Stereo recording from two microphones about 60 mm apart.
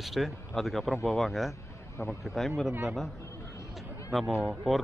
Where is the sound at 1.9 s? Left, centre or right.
Left.